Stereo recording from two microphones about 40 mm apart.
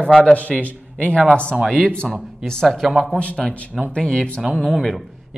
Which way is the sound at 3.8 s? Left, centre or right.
Left.